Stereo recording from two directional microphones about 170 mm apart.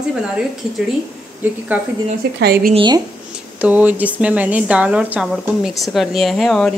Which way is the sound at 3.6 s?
10° right (ahead or behind).